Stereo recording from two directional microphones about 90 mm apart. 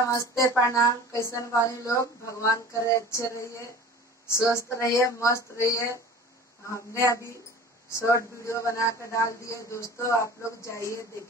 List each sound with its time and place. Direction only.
0.0 s speech: 35° left (ahead or behind)
7.9 s speech: 35° left (ahead or behind)